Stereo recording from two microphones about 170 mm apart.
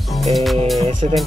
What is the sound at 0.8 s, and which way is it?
Speech, 45° right (ahead or behind).